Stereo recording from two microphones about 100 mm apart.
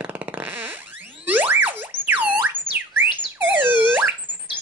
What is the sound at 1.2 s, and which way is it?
Chirp tone, 15° right (ahead or behind).